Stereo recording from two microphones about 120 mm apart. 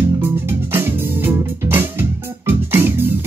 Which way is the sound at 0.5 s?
20° right (ahead or behind).